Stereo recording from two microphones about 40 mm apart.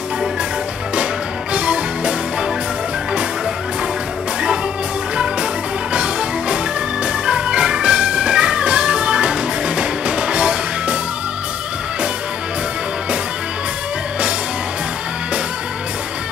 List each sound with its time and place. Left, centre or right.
1.5 s music: right
5.1 s music: right
7.2 s organ: right